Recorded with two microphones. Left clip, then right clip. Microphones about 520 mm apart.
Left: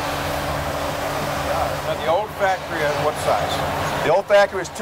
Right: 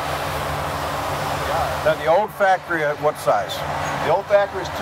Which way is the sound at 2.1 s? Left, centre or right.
Right.